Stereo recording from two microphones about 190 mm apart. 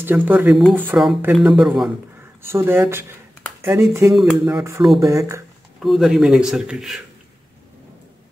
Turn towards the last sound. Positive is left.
turn(degrees=-5)  # may be behind; listen again after turning